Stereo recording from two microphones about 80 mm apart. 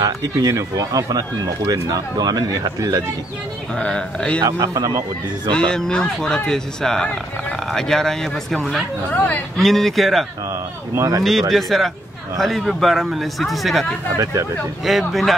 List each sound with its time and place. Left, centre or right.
0.0 s speech: right
3.7 s speech: centre
4.4 s speech: right
5.5 s a man's voice: centre
9.1 s a man's voice: centre
9.6 s a man's voice: centre
11.0 s speech: right
11.5 s a man's voice: centre
14.1 s speech: right
14.9 s a man's voice: centre